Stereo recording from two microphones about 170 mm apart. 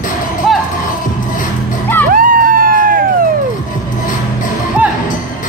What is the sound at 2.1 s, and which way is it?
Music, 55° right (ahead or behind).